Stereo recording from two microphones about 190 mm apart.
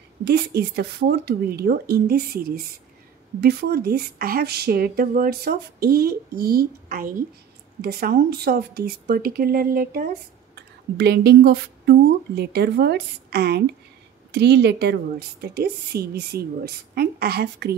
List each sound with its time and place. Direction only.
0.2 s a woman's voice: 60° right (ahead or behind)
10.5 s a woman's voice: 60° right (ahead or behind)